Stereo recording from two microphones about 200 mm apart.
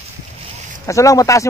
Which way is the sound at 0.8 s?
15° left (ahead or behind).